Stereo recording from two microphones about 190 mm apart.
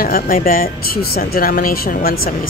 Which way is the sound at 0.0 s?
50° left (ahead or behind).